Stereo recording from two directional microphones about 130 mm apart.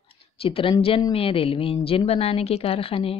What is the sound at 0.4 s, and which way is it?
Speech, 45° left (ahead or behind).